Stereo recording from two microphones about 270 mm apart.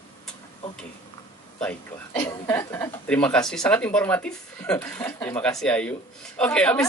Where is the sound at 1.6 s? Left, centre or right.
Centre.